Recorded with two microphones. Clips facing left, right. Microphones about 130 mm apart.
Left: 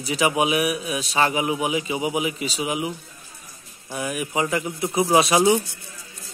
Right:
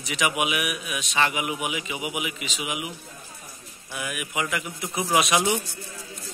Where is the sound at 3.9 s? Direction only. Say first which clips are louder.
Left 5 dB; 30° left (ahead or behind).